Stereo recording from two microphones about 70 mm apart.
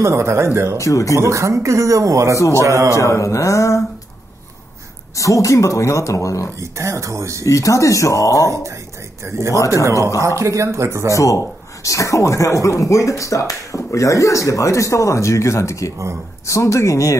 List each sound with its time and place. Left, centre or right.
0.0 s speech: right
0.7 s speech: left
1.1 s speech: right
3.0 s speech: left
5.1 s speech: left
6.6 s speech: right
7.4 s speech: left
9.2 s speech: right
11.1 s speech: left